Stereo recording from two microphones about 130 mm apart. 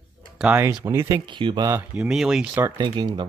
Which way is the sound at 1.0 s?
40° right (ahead or behind).